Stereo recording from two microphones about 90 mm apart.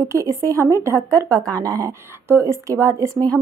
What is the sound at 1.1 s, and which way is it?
Speech, 40° right (ahead or behind).